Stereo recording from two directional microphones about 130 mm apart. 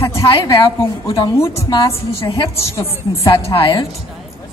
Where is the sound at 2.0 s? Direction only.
45° left (ahead or behind).